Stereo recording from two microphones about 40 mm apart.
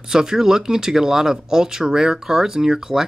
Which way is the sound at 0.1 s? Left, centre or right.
Centre.